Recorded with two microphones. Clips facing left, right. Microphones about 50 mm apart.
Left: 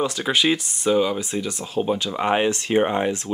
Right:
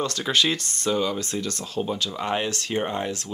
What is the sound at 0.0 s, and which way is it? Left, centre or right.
Speech, centre.